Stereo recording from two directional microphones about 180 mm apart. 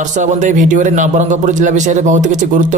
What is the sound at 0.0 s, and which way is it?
Speech, 45° right (ahead or behind).